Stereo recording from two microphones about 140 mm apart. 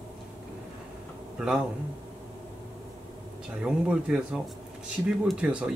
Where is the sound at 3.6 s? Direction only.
5° right (ahead or behind).